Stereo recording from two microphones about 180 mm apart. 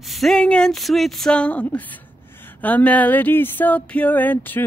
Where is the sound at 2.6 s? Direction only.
10° left (ahead or behind).